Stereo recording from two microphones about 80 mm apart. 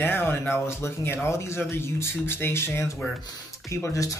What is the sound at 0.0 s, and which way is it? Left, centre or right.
Speech, left.